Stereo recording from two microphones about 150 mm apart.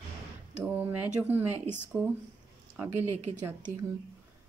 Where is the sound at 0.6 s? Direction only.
10° right (ahead or behind).